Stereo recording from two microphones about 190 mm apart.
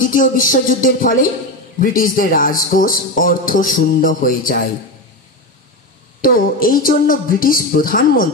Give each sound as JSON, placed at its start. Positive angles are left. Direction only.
{"t": 0.0, "sound": "speech", "side_deg": 45}
{"t": 6.2, "sound": "speech", "side_deg": 50}